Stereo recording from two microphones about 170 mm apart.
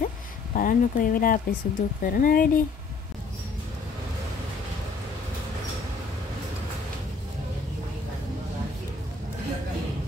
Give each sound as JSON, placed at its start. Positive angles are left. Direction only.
{"t": 0.6, "sound": "speech", "side_deg": 55}